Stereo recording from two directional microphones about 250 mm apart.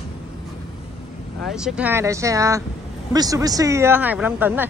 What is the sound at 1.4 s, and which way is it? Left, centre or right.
Speech, centre.